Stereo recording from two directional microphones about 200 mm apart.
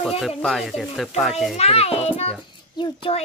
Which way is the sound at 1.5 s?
30° left (ahead or behind).